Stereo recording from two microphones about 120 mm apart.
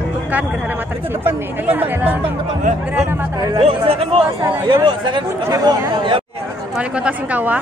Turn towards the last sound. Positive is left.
turn(degrees=-15)  # may be behind; listen again after turning